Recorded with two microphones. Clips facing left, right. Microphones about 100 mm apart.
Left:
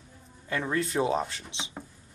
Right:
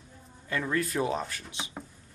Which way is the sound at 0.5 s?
25° left (ahead or behind).